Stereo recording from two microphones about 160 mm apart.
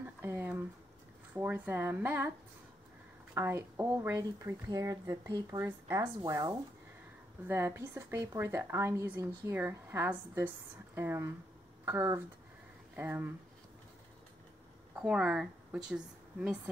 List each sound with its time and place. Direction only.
0.0 s a sound: 15° right (ahead or behind)
1.3 s a woman's voice: 10° right (ahead or behind)
3.3 s a woman's voice: 15° right (ahead or behind)
15.0 s a woman's voice: 5° right (ahead or behind)